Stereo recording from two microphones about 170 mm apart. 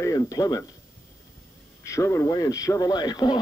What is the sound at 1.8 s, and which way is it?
Speech, 15° left (ahead or behind).